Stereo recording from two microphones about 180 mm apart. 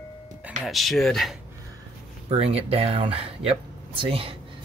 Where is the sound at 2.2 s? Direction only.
35° right (ahead or behind).